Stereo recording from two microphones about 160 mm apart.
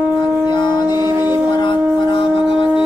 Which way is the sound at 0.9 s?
15° right (ahead or behind).